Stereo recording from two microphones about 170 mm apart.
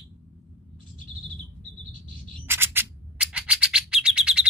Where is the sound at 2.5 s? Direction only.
15° right (ahead or behind).